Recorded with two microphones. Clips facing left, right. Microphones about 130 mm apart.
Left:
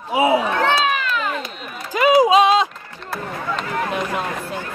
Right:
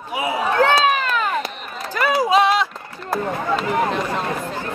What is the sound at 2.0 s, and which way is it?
Music, 20° left (ahead or behind).